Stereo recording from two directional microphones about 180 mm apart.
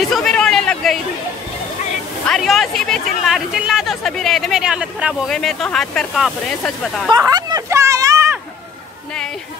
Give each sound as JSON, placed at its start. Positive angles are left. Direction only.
{"t": 0.1, "sound": "chatter", "side_deg": 5}
{"t": 2.2, "sound": "speech", "side_deg": 0}
{"t": 7.2, "sound": "a sound", "side_deg": -20}